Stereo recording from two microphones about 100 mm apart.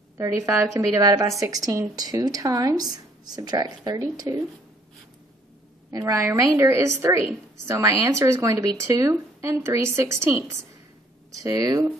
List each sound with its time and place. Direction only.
0.2 s speech: 30° right (ahead or behind)
5.9 s a woman's voice: 35° right (ahead or behind)